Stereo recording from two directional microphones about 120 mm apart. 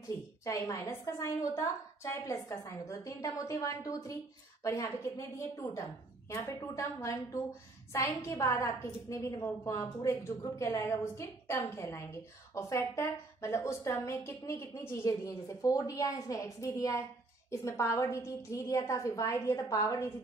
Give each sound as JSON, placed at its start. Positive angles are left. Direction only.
{"t": 0.5, "sound": "a woman's voice", "side_deg": 25}